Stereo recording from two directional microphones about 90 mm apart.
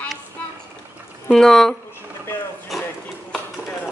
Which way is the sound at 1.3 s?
5° left (ahead or behind).